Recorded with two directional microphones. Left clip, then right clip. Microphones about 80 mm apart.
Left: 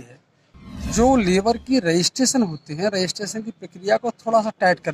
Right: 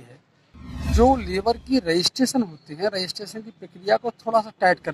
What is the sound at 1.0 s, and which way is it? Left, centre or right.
Speech, left.